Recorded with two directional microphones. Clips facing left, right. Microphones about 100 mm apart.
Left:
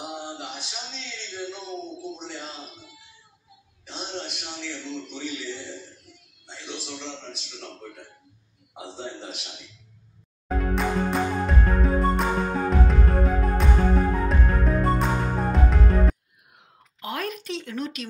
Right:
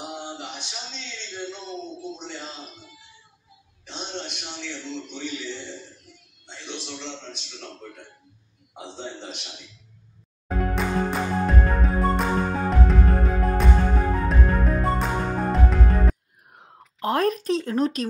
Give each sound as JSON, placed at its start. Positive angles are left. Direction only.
{"t": 0.0, "sound": "a sound", "side_deg": 0}
{"t": 3.8, "sound": "a man's voice", "side_deg": 0}
{"t": 10.5, "sound": "music", "side_deg": 0}
{"t": 16.5, "sound": "speech", "side_deg": -40}